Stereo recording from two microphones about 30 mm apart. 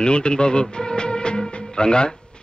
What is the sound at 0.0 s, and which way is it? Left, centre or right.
Speech, left.